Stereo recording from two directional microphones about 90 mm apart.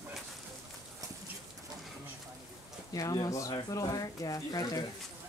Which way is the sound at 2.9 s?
45° left (ahead or behind).